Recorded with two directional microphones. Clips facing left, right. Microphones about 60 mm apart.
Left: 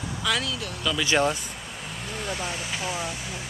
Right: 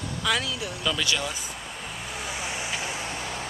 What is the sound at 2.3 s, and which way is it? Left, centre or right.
Speech, centre.